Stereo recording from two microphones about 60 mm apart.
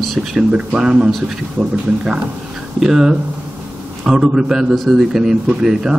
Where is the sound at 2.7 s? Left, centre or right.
Centre.